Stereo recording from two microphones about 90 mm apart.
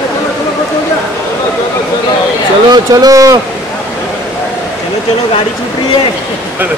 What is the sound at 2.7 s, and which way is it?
Speech, 45° right (ahead or behind).